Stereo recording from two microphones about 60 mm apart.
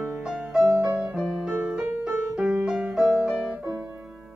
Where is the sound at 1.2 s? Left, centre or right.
Centre.